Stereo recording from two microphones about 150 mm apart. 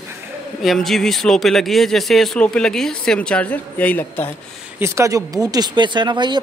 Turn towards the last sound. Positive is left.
turn(degrees=-30)  # may be behind; listen again after turning